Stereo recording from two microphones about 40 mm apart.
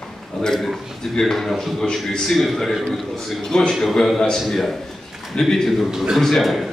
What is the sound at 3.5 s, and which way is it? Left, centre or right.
A man's voice, centre.